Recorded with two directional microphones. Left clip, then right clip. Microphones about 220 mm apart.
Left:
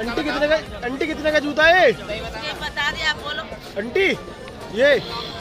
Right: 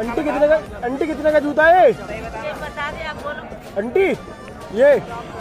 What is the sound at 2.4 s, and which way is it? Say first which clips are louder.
Music: left 3 dB; 65° left (ahead or behind).